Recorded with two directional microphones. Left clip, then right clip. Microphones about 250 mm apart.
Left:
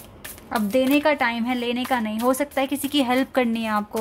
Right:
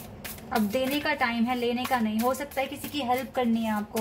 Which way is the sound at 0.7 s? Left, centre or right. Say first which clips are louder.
Left 11 dB; left.